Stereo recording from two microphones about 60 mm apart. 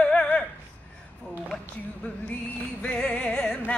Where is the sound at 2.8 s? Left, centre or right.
Centre.